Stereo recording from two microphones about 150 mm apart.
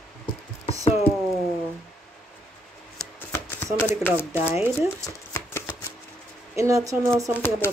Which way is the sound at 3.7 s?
15° left (ahead or behind).